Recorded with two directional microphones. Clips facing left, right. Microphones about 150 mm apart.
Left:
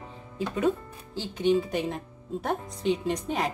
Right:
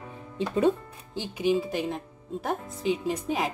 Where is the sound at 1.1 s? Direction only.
15° right (ahead or behind).